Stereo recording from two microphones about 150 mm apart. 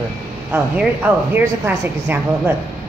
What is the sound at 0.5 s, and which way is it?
Speech, 10° right (ahead or behind).